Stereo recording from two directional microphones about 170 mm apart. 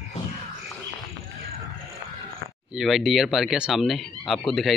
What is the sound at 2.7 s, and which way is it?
Speech, centre (ahead or behind).